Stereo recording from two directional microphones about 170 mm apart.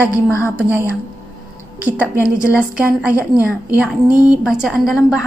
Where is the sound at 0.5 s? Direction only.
15° right (ahead or behind).